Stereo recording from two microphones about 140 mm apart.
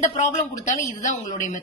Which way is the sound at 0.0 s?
50° left (ahead or behind).